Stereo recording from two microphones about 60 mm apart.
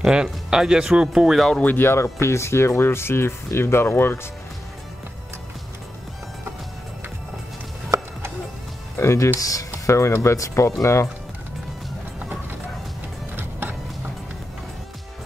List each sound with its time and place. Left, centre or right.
0.0 s speech: centre
1.6 s speech: left
2.1 s speech: left
7.9 s a sound: right
8.9 s speech: left
9.4 s speech: left
13.4 s music: right